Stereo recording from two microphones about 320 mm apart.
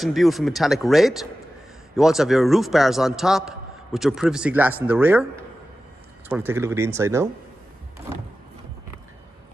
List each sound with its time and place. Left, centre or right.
0.0 s a man's voice: centre